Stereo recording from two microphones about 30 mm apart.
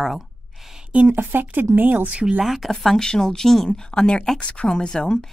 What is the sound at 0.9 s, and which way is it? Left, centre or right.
A woman's voice, right.